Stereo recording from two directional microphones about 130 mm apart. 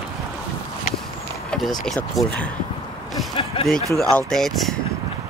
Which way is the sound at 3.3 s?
45° left (ahead or behind).